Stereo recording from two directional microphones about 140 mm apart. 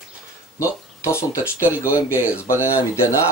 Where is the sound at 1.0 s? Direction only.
20° left (ahead or behind).